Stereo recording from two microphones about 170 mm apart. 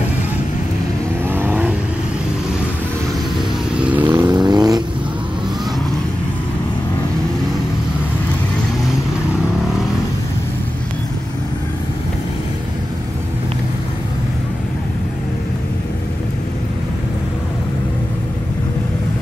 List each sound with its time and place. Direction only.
1.3 s vehicle: 10° right (ahead or behind)
4.0 s vehicle: 25° right (ahead or behind)